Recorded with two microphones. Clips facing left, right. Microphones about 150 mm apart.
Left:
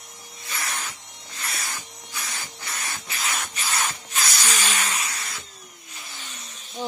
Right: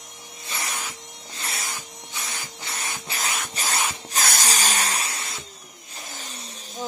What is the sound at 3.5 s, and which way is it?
Shuffle, 40° right (ahead or behind).